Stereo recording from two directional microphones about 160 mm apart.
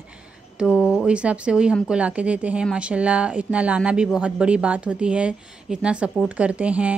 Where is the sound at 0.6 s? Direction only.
5° right (ahead or behind).